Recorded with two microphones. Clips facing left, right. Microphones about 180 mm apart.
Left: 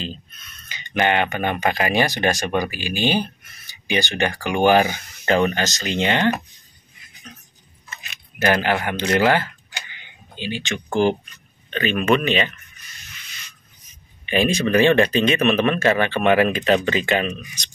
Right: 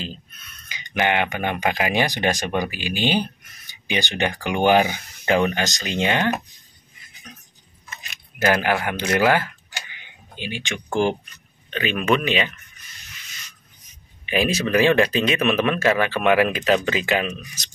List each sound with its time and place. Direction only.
0.0 s speech: 10° right (ahead or behind)
8.4 s speech: 10° right (ahead or behind)
14.2 s speech: 5° right (ahead or behind)